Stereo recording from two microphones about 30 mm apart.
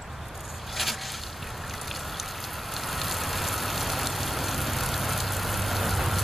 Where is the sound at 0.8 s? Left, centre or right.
Centre.